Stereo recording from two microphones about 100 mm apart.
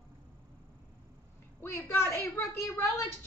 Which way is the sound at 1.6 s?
25° left (ahead or behind).